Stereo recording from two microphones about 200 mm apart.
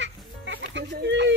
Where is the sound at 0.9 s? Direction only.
60° right (ahead or behind).